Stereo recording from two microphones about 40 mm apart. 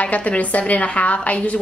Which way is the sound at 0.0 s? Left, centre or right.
Left.